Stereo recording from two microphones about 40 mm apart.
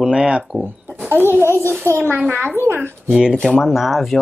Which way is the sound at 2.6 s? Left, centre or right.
Right.